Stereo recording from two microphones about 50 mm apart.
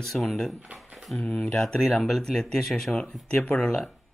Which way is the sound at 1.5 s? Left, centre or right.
Centre.